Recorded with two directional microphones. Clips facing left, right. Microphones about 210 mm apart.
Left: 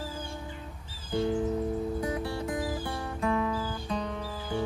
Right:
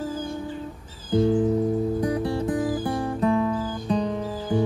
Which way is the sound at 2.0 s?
35° right (ahead or behind).